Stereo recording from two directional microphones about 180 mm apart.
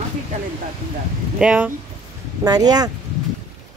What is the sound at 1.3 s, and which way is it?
Speech, 5° right (ahead or behind).